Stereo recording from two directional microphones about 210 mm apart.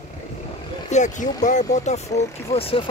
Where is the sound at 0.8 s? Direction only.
35° left (ahead or behind).